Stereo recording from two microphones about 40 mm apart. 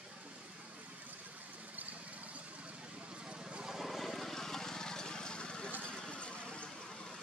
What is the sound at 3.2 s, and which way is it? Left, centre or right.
Vehicle, right.